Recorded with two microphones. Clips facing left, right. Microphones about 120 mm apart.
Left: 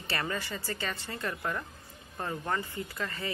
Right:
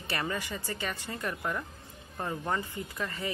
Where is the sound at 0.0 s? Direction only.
15° right (ahead or behind).